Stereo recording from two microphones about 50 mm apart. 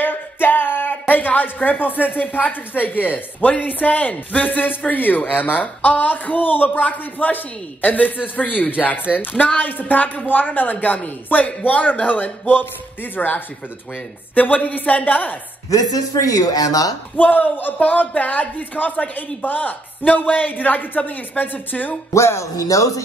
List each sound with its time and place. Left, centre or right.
0.0 s speech: left
17.2 s speech: left
22.1 s speech: left